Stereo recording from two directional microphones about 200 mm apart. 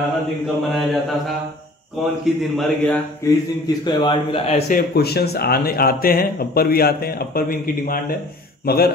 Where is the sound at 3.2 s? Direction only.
20° left (ahead or behind).